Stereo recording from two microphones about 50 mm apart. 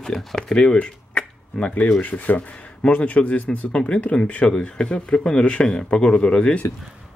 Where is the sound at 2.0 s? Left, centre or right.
Left.